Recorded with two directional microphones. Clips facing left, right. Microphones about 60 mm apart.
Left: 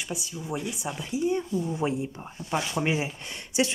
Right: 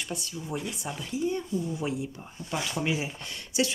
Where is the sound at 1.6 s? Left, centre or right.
Left.